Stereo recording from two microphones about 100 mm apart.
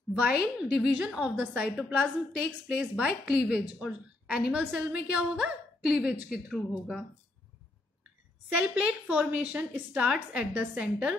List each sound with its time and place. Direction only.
0.2 s a woman's voice: 10° right (ahead or behind)
8.5 s a woman's voice: 15° right (ahead or behind)